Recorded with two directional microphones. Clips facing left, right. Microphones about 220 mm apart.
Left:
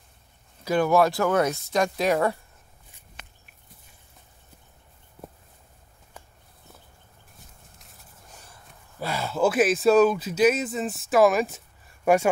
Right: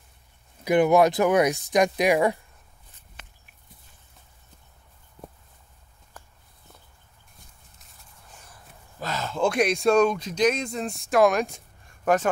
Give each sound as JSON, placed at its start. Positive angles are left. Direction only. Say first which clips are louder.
{"t": 0.7, "sound": "speech", "louder": "right 2 dB", "side_deg": -20}
{"t": 9.0, "sound": "speech", "louder": "left 2 dB", "side_deg": 10}